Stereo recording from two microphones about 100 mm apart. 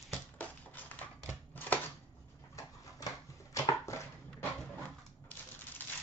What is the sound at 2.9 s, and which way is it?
Dog, 35° left (ahead or behind).